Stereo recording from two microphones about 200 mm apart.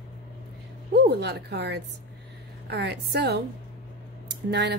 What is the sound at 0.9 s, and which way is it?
Speech, 55° right (ahead or behind).